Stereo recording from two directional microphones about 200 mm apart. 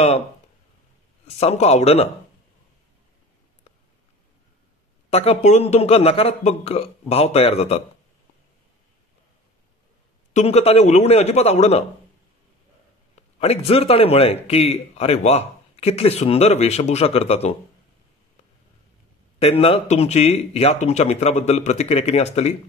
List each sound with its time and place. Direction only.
1.2 s a man's voice: 30° left (ahead or behind)
5.1 s a man's voice: 30° left (ahead or behind)
10.3 s a man's voice: 30° left (ahead or behind)
13.4 s a man's voice: 30° left (ahead or behind)
19.4 s a man's voice: 30° left (ahead or behind)